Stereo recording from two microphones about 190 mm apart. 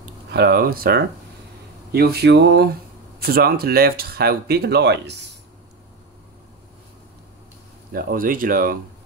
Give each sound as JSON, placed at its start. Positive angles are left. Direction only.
{"t": 0.0, "sound": "speech", "side_deg": -55}
{"t": 1.9, "sound": "mantra", "side_deg": -55}
{"t": 3.2, "sound": "speech", "side_deg": -55}
{"t": 7.9, "sound": "speech", "side_deg": -50}